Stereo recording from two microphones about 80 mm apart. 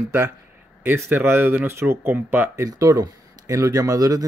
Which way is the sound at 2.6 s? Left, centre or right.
Right.